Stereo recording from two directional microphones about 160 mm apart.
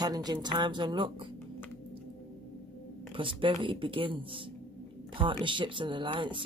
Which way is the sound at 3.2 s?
30° right (ahead or behind).